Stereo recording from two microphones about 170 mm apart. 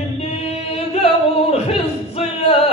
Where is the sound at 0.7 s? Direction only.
35° left (ahead or behind).